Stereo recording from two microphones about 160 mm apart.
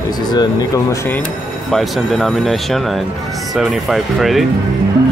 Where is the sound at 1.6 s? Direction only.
Centre (ahead or behind).